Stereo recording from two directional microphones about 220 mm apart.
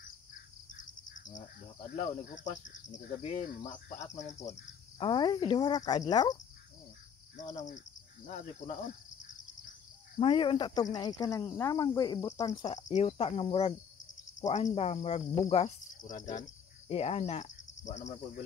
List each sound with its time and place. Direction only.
0.7 s a sound: 35° left (ahead or behind)
2.0 s speech: 35° left (ahead or behind)
4.5 s speech: 20° left (ahead or behind)
7.5 s speech: 35° left (ahead or behind)
10.1 s speech: 20° left (ahead or behind)
12.7 s speech: 30° left (ahead or behind)
15.5 s cricket: 30° left (ahead or behind)